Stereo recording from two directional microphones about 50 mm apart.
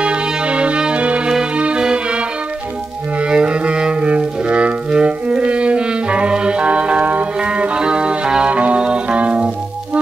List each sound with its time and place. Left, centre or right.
0.0 s music: right